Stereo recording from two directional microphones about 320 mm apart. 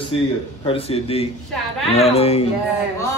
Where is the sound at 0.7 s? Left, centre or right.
Centre.